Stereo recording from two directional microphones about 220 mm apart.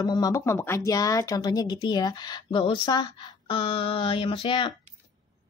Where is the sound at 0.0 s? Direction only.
15° left (ahead or behind).